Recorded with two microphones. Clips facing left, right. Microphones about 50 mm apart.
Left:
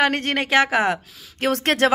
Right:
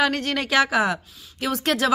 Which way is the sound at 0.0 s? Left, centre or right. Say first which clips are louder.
Left 2 dB; left.